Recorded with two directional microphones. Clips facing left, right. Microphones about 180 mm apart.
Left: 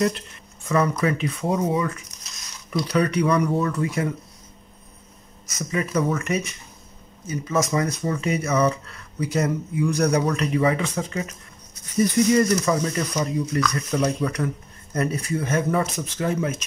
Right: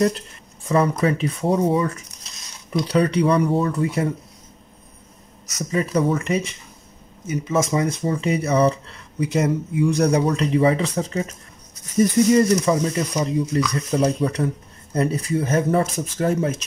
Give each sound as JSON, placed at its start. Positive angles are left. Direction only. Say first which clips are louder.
{"t": 0.7, "sound": "speech", "louder": "right 2 dB", "side_deg": -30}
{"t": 2.9, "sound": "speech", "louder": "right 3 dB", "side_deg": -30}
{"t": 5.7, "sound": "speech", "louder": "right 3 dB", "side_deg": -30}
{"t": 12.4, "sound": "speech", "louder": "right 3 dB", "side_deg": -20}